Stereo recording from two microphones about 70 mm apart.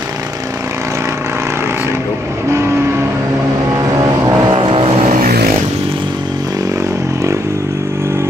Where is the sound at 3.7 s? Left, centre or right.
Right.